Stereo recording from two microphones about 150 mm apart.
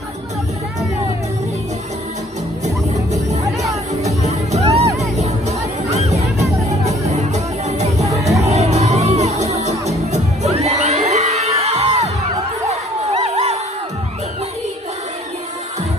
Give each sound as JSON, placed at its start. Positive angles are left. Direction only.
{"t": 4.0, "sound": "music", "side_deg": -50}
{"t": 5.9, "sound": "music", "side_deg": -45}
{"t": 8.0, "sound": "music", "side_deg": -20}
{"t": 8.5, "sound": "music", "side_deg": -45}
{"t": 13.2, "sound": "a sound", "side_deg": -45}